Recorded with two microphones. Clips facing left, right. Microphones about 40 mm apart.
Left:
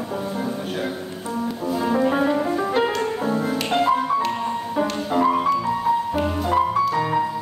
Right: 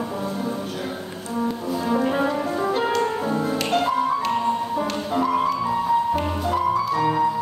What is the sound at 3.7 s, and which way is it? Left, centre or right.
Music, centre.